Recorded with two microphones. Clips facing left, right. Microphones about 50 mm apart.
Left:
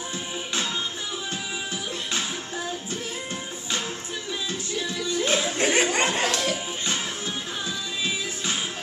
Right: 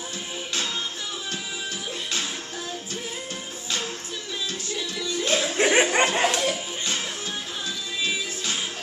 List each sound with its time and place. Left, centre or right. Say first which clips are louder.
5.0 s music: even; left
5.6 s chuckle: right 5 dB; centre
6.1 s music: right 2 dB; centre